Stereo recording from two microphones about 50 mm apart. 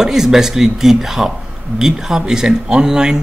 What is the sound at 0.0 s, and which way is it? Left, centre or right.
Speech, centre.